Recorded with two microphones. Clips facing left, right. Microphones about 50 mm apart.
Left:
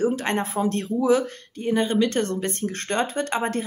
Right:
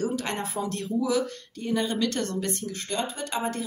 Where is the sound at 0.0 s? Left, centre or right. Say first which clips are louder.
Left 6 dB; left.